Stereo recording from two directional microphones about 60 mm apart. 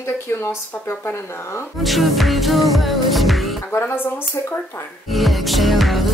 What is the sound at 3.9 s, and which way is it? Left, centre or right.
Speech, left.